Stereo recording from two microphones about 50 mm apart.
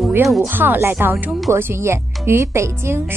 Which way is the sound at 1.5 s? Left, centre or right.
Right.